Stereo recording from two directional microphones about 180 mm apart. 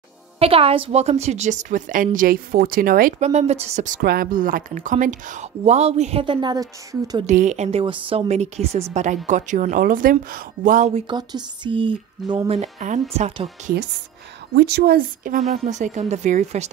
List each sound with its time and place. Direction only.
0.4 s a woman's voice: 35° right (ahead or behind)
7.2 s a woman's voice: 40° right (ahead or behind)
10.9 s speech: 30° right (ahead or behind)
12.5 s a woman's voice: 40° right (ahead or behind)
14.5 s a woman's voice: 70° right (ahead or behind); by 16.6 s 40° right (ahead or behind)